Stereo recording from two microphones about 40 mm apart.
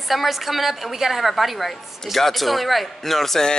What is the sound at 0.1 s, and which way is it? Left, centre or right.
A woman's voice, centre.